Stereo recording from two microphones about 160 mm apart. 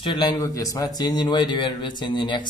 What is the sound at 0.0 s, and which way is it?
Speech, 30° left (ahead or behind).